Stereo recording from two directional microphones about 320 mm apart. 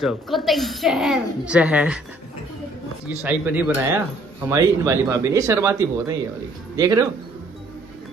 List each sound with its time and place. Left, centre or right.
0.0 s a woman's voice: centre
3.3 s speech: centre